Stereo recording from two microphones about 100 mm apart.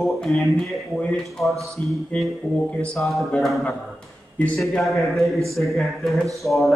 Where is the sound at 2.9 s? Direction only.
Centre (ahead or behind).